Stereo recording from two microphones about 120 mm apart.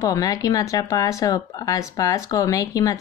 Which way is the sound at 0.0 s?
30° left (ahead or behind).